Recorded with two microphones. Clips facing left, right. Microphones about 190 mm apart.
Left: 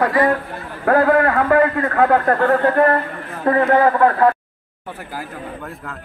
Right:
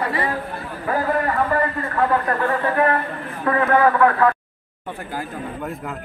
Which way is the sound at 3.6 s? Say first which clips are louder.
Left 1 dB; 30° left (ahead or behind).